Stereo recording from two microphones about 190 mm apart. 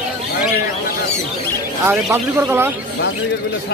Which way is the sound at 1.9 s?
10° right (ahead or behind).